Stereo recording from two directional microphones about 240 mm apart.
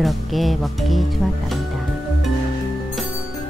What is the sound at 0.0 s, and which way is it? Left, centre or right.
Speech, centre.